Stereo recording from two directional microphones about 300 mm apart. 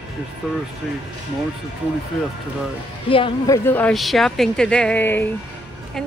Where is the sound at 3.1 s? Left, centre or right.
Centre.